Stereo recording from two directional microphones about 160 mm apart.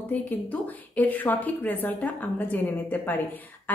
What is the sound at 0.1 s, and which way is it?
A woman's voice, 10° left (ahead or behind).